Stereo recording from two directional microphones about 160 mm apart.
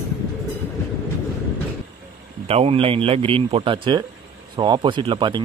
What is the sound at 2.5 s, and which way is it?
Speech, 40° right (ahead or behind).